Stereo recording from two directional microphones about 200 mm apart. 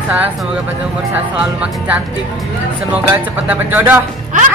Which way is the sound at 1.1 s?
5° right (ahead or behind).